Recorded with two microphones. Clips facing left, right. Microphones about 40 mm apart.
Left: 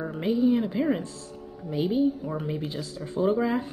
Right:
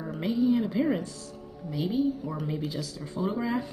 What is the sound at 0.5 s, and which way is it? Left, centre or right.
Speech, centre.